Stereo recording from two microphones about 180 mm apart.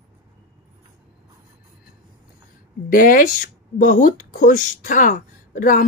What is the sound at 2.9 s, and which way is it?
Speech, 50° left (ahead or behind).